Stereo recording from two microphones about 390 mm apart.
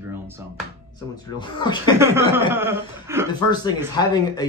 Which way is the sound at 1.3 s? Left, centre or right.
Centre.